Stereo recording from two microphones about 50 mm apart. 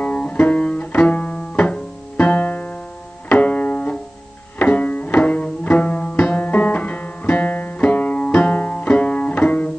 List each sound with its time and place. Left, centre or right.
0.0 s music: left